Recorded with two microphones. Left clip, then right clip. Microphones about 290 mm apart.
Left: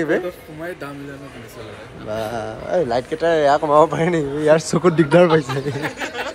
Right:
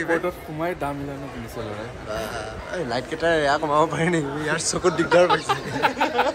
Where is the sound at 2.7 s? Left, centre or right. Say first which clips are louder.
Left 8 dB; centre.